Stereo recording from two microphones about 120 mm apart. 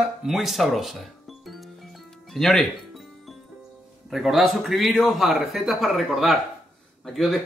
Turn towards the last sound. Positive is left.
turn(degrees=0)  # may be behind; listen again after turning